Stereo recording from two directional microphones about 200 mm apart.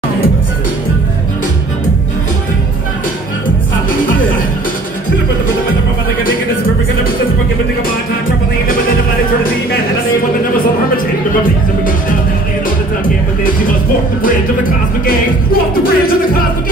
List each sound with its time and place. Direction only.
15.0 s music: 45° left (ahead or behind)